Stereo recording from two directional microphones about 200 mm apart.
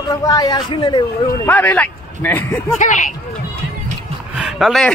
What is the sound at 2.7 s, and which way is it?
Speech, 40° left (ahead or behind).